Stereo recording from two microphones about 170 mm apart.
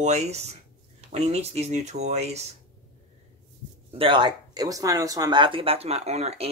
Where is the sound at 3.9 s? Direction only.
30° right (ahead or behind).